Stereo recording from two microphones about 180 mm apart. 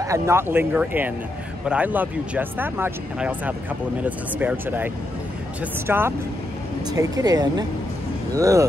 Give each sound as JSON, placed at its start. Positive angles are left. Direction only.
{"t": 0.0, "sound": "speech", "side_deg": -15}